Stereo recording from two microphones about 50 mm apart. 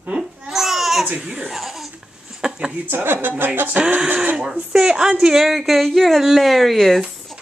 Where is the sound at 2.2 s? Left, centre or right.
Centre.